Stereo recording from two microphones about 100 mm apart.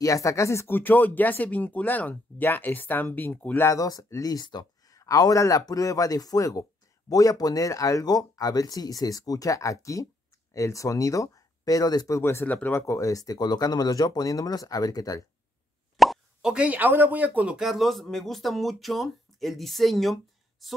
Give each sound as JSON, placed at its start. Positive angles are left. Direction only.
{"t": 0.0, "sound": "speech", "side_deg": 35}
{"t": 12.2, "sound": "speech", "side_deg": 25}
{"t": 12.8, "sound": "speech", "side_deg": 30}
{"t": 16.0, "sound": "speech", "side_deg": 0}